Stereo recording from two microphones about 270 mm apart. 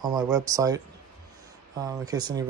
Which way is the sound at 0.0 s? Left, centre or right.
Centre.